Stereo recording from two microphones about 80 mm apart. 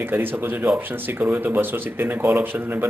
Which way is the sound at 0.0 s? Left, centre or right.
Right.